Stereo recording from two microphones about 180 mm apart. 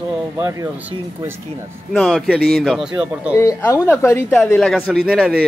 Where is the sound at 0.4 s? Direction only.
15° right (ahead or behind).